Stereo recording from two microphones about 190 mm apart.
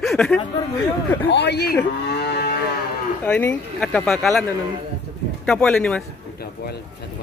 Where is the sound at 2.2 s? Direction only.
55° left (ahead or behind).